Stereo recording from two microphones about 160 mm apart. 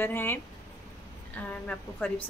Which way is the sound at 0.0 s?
15° left (ahead or behind).